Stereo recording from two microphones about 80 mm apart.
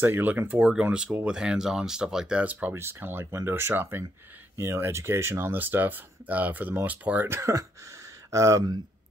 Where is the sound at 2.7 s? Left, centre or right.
Right.